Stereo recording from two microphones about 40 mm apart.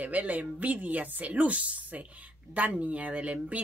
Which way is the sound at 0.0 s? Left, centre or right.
Right.